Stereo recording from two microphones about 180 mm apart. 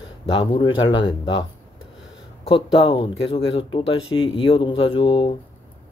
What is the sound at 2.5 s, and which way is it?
Speech, 30° left (ahead or behind).